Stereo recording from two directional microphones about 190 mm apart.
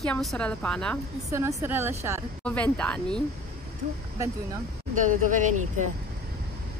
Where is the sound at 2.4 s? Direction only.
5° left (ahead or behind).